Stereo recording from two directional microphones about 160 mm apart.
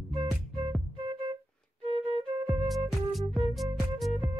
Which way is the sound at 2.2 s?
Centre (ahead or behind).